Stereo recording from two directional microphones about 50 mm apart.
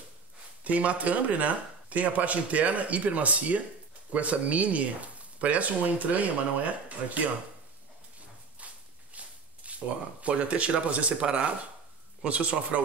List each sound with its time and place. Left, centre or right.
0.7 s speech: right
9.1 s speech: right